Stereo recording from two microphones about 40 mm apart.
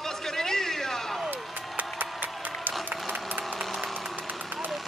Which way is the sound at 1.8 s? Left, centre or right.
Right.